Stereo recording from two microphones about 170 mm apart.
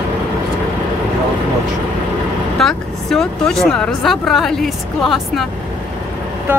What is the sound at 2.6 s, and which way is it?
A woman's voice, 5° left (ahead or behind).